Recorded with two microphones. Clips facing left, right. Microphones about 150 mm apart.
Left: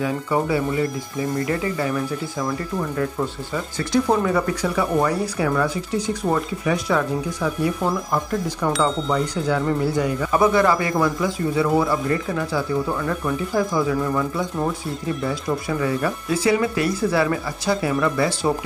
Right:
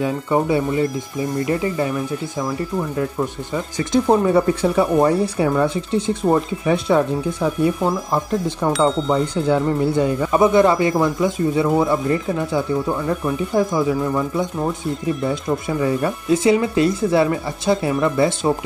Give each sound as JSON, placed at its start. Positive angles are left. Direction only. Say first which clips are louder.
{"t": 0.0, "sound": "speech", "louder": "right 3 dB", "side_deg": -25}
{"t": 3.5, "sound": "speech", "louder": "right 2 dB", "side_deg": -20}